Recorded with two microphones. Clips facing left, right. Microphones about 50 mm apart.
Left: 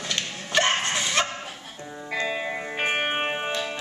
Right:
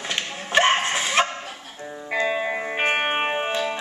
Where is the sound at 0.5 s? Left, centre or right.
Right.